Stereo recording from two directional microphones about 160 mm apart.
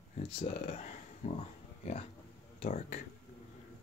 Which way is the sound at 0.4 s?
35° left (ahead or behind).